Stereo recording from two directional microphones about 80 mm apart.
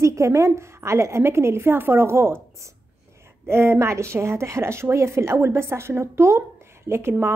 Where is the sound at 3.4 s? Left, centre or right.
Right.